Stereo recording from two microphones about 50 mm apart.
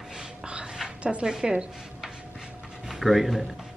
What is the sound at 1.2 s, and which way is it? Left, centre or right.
Speech, centre.